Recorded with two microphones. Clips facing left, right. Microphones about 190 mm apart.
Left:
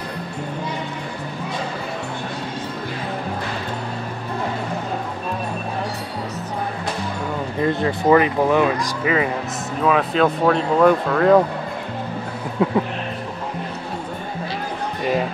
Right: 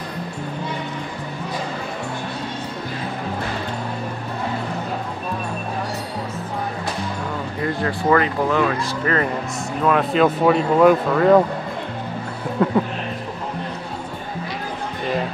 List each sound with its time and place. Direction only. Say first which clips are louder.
7.6 s speech: left 3 dB; 20° left (ahead or behind); by 11.4 s centre (ahead or behind)
12.6 s speech: even; 5° left (ahead or behind)